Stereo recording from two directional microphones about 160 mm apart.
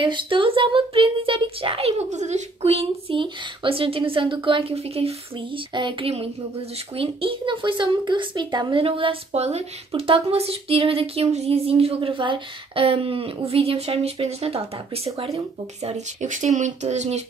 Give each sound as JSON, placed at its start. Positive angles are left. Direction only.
{"t": 0.0, "sound": "speech", "side_deg": -30}